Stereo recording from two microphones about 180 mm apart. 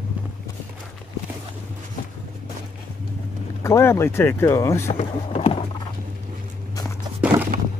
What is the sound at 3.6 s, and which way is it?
Speech, 15° left (ahead or behind).